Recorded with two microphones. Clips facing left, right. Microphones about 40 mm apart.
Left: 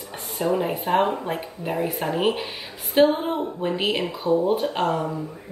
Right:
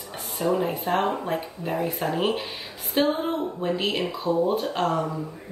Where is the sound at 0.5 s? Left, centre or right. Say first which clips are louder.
Left 2 dB; centre.